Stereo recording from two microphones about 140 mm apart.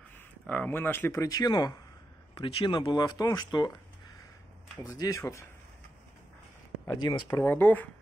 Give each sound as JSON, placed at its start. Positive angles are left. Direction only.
{"t": 0.5, "sound": "speech", "side_deg": 10}
{"t": 4.9, "sound": "speech", "side_deg": 25}
{"t": 6.9, "sound": "speech", "side_deg": 30}
{"t": 7.2, "sound": "speech", "side_deg": 15}